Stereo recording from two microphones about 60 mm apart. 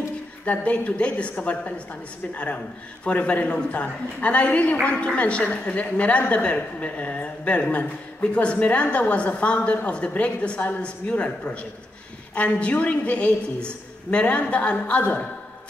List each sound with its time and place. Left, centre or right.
0.5 s a woman's voice: left